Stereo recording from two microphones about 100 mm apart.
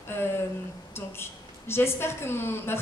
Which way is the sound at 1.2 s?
25° left (ahead or behind).